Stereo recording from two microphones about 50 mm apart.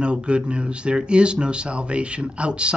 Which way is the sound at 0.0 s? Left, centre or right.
Right.